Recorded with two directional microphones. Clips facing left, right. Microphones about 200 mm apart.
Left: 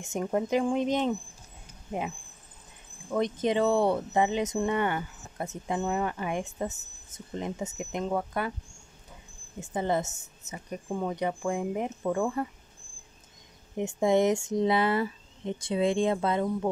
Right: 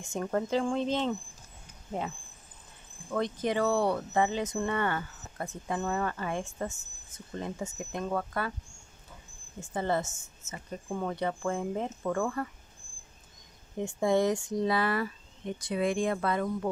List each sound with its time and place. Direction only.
0.0 s speech: 20° left (ahead or behind)
9.6 s speech: 20° left (ahead or behind)
13.7 s speech: 20° left (ahead or behind)